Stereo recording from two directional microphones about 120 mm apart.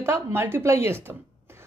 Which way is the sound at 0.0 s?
20° right (ahead or behind).